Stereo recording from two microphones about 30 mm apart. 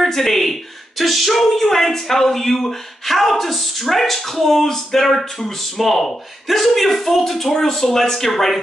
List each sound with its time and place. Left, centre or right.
0.0 s speech: centre